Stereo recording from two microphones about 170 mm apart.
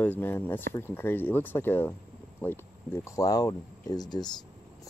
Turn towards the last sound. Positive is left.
turn(degrees=25)  # may be behind; listen again after turning